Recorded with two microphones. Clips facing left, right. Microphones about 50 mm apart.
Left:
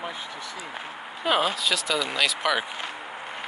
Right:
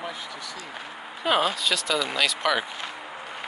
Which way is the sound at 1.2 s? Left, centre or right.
Centre.